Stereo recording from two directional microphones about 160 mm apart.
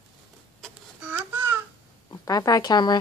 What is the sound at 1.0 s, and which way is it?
Babbling, 10° right (ahead or behind).